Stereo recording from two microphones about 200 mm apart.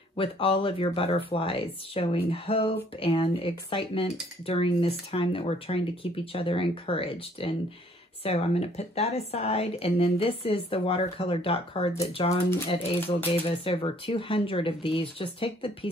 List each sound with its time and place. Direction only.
0.1 s speech: 25° left (ahead or behind)